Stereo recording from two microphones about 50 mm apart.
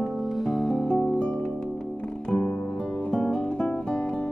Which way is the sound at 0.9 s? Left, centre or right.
Centre.